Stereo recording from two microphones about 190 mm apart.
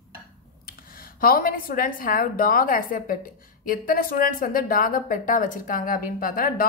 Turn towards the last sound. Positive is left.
turn(degrees=50)  # may be behind; listen again after turning